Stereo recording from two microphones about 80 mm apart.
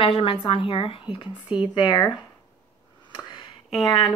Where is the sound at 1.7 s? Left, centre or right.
Left.